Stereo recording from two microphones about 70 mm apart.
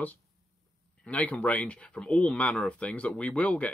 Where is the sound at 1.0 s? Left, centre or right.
Left.